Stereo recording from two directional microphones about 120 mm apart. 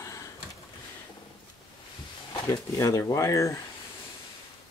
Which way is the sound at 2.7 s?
25° left (ahead or behind).